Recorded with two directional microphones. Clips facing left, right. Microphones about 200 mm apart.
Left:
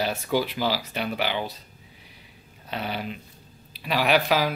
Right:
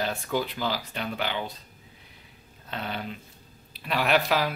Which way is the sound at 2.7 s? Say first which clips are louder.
Left 3 dB; 10° left (ahead or behind).